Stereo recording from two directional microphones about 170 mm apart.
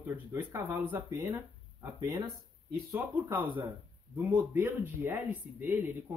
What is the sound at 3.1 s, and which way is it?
Speech, 10° right (ahead or behind).